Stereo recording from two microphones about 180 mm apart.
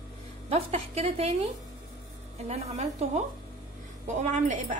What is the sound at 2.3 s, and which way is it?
Speech, 35° right (ahead or behind).